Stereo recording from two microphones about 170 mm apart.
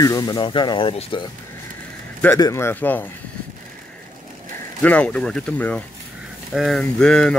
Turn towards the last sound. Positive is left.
turn(degrees=5)  # may be behind; listen again after turning